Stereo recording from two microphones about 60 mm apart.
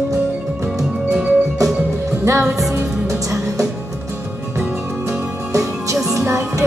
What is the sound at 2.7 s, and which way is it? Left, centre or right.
Music, right.